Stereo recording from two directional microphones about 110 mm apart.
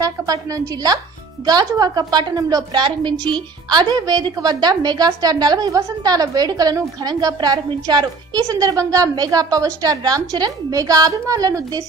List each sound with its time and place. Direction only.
0.0 s a woman's voice: 30° right (ahead or behind)